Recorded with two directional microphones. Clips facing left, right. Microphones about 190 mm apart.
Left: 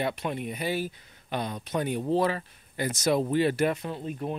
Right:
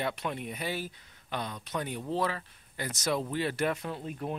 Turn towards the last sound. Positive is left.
turn(degrees=0)  # may be behind; listen again after turning